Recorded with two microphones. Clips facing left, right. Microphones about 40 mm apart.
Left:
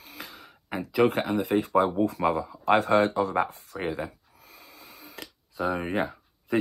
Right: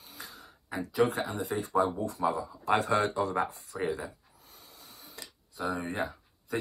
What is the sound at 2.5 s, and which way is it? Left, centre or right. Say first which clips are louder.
Speech: left 7 dB; left.